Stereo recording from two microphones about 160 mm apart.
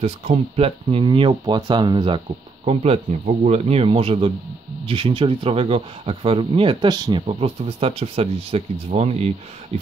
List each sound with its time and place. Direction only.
0.0 s speech: 40° right (ahead or behind)